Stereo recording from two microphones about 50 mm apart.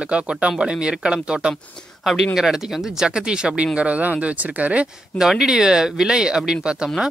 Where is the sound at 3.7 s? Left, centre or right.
Right.